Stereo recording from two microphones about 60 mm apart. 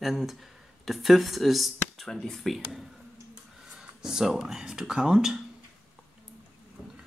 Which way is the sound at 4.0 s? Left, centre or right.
Centre.